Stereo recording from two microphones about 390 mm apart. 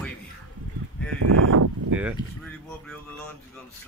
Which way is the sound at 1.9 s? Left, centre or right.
Centre.